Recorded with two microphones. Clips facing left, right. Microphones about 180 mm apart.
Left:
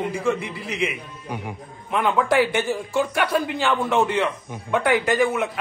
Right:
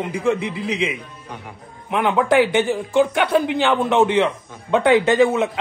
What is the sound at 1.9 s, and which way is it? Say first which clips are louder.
Speech: right 3 dB; 15° right (ahead or behind).